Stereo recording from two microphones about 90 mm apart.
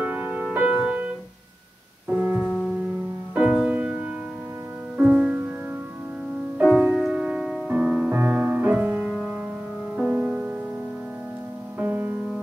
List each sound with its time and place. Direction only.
0.0 s music: 20° right (ahead or behind)
2.0 s piano: 20° right (ahead or behind)
3.3 s music: 10° right (ahead or behind)
6.6 s music: centre (ahead or behind); by 9.1 s 20° right (ahead or behind)
10.1 s music: 15° right (ahead or behind)
11.8 s music: 20° right (ahead or behind)